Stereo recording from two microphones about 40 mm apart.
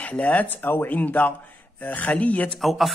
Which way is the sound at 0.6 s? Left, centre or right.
Left.